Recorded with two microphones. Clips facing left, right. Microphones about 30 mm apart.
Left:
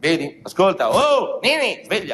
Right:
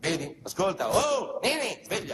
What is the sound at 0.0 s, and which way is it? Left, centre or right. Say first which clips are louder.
Speech: left 10 dB; left.